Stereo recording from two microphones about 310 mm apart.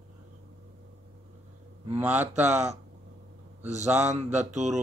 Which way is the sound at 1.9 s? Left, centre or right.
Centre.